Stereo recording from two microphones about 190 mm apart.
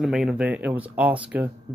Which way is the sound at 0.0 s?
Centre (ahead or behind).